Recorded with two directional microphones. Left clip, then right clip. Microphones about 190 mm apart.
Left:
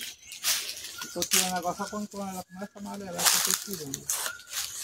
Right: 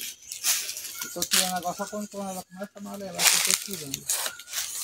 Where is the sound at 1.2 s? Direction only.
15° right (ahead or behind).